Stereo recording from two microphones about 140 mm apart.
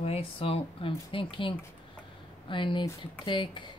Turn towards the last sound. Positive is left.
turn(degrees=35)  # may be behind; listen again after turning